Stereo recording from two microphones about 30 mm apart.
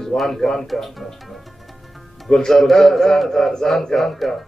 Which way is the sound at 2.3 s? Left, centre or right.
Centre.